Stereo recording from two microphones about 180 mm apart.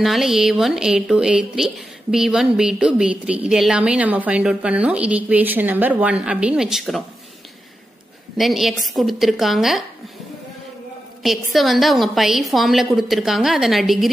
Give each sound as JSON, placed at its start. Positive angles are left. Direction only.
{"t": 0.0, "sound": "speech", "side_deg": 0}
{"t": 8.4, "sound": "speech", "side_deg": 0}
{"t": 11.2, "sound": "speech", "side_deg": 0}